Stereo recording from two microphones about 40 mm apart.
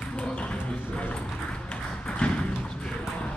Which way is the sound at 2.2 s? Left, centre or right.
Left.